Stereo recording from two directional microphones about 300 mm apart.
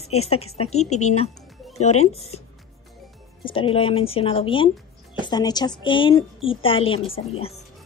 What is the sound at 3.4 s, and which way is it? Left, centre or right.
A woman's voice, centre.